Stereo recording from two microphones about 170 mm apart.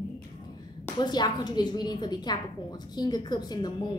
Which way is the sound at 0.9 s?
25° left (ahead or behind).